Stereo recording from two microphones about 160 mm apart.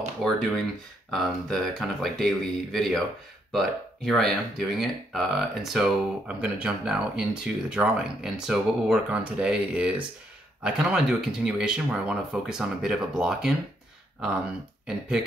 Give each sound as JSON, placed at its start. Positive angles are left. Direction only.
{"t": 0.2, "sound": "speech", "side_deg": 0}
{"t": 14.9, "sound": "speech", "side_deg": -5}